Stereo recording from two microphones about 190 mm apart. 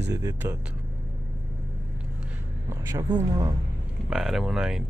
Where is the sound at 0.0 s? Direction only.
15° right (ahead or behind).